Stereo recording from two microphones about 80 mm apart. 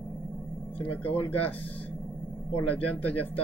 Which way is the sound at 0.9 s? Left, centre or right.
Left.